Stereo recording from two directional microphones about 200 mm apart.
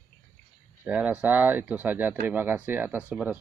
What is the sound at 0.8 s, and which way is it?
Speech, 5° right (ahead or behind).